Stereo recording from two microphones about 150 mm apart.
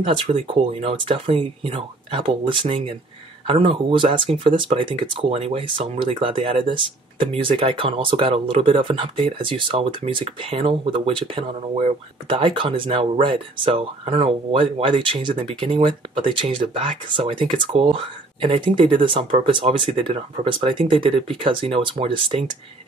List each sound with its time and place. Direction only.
0.0 s speech: 40° right (ahead or behind)